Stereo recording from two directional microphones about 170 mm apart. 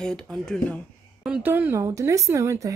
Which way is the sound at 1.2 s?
10° right (ahead or behind).